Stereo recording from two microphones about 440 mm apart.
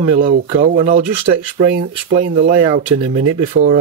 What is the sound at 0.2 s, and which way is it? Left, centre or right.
Speech, centre.